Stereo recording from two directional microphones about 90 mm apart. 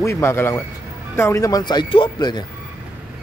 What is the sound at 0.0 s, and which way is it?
Speech, 30° left (ahead or behind).